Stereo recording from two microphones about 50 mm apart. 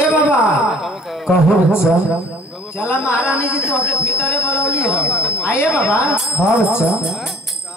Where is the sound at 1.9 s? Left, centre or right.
Right.